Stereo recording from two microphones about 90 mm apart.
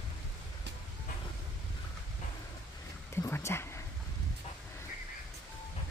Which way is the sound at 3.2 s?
30° left (ahead or behind).